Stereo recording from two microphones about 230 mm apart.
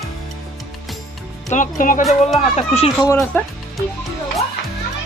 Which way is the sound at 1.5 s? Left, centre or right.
Left.